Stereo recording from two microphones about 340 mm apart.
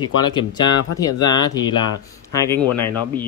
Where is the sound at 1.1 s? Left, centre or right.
Left.